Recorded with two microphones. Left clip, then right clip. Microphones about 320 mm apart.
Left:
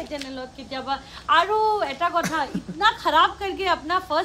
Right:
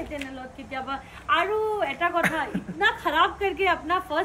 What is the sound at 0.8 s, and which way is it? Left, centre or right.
A woman's voice, centre.